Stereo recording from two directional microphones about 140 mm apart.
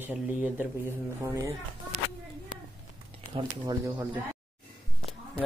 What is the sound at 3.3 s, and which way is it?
Speech, 30° right (ahead or behind).